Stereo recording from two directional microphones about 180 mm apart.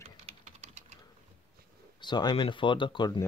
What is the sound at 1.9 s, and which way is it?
Speech, 25° left (ahead or behind).